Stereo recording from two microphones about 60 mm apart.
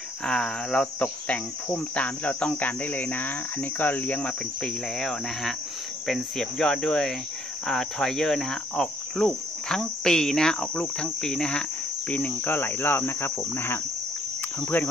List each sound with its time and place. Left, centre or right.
0.2 s cricket: centre
4.9 s cricket: centre
12.1 s cricket: left
12.4 s cricket: left